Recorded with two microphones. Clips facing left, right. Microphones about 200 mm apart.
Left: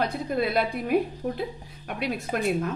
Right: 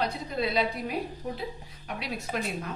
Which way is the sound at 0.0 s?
55° left (ahead or behind).